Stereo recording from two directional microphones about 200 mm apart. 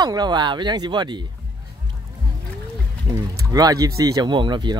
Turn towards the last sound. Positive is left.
turn(degrees=-20)  # may be behind; listen again after turning